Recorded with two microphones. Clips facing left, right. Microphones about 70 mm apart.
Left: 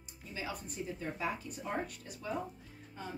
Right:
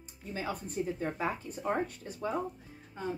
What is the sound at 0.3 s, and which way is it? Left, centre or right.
A woman's voice, right.